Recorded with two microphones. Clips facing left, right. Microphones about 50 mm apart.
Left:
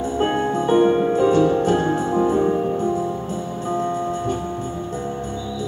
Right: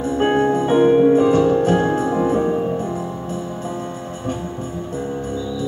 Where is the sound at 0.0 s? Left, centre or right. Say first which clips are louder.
Right 3 dB; right.